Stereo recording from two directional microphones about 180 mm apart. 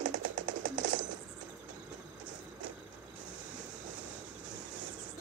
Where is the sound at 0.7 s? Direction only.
90° right.